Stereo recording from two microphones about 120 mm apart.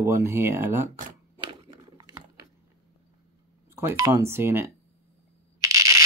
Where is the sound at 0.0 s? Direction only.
20° right (ahead or behind).